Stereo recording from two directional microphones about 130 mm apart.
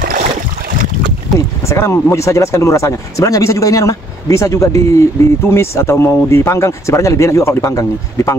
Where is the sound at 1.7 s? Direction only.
20° left (ahead or behind).